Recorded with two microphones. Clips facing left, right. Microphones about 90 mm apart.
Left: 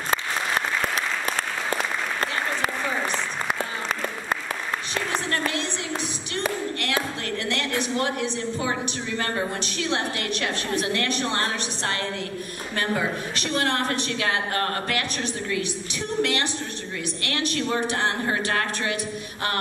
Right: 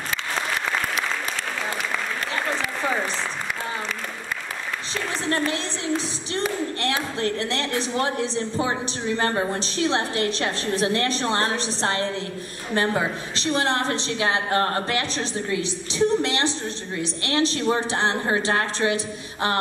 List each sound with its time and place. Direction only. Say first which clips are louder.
5.3 s a woman's voice: right 2 dB; 30° right (ahead or behind)